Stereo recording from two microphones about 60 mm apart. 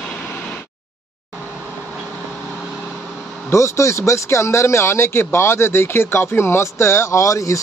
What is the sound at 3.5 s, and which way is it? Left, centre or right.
Speech, left.